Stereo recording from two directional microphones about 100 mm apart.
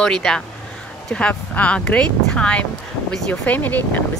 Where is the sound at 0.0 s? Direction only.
5° left (ahead or behind).